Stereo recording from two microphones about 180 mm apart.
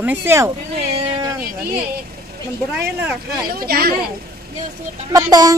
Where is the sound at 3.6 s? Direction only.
55° right (ahead or behind).